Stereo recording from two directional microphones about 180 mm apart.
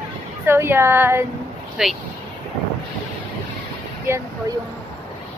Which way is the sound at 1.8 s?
Centre (ahead or behind).